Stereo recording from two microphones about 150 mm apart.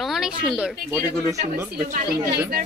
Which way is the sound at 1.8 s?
80° right.